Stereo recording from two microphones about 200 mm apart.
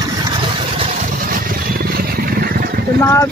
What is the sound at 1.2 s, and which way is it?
Vehicle, 50° right (ahead or behind).